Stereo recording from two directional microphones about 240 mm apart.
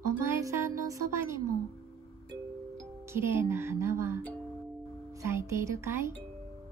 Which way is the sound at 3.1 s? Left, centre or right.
Centre.